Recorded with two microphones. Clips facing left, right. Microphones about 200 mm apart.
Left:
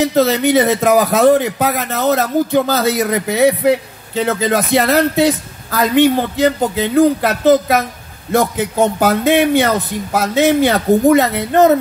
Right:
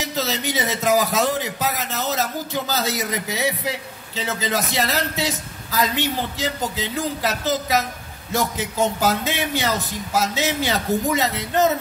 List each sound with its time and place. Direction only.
0.0 s speech: 55° left (ahead or behind)